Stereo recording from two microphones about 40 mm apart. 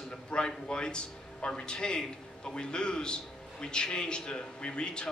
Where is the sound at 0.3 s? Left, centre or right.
Left.